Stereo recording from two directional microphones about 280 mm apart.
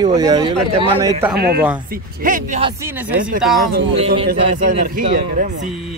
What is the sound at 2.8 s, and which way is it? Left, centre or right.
Speech, centre.